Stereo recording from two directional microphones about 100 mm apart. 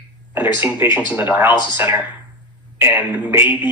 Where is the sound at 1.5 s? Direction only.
45° left (ahead or behind).